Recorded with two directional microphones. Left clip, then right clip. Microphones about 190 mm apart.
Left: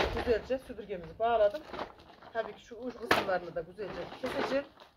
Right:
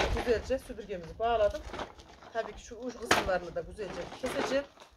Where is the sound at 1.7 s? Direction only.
15° left (ahead or behind).